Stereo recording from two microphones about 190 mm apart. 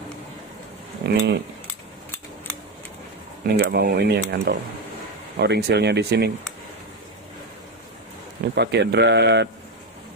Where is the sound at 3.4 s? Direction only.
55° right (ahead or behind).